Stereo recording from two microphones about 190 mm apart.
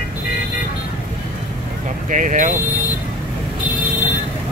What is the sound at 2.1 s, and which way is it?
Vehicle, 40° right (ahead or behind).